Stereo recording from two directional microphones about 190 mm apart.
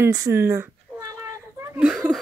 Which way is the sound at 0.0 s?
15° right (ahead or behind).